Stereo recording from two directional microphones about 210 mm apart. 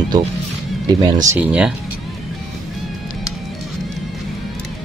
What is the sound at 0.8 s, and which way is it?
Speech, 20° right (ahead or behind).